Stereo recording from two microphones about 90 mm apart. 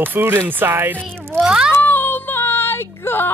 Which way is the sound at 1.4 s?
10° right (ahead or behind).